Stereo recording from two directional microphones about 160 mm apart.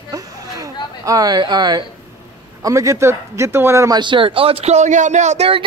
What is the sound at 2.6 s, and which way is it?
Speech, 20° right (ahead or behind).